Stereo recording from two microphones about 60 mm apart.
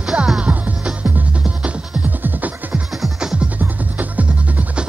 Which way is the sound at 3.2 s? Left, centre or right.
Centre.